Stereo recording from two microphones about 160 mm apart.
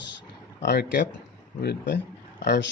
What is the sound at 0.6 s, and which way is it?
Speech, 90° left.